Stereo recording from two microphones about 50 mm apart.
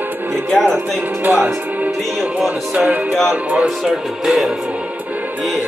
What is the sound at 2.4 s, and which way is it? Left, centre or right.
Music, right.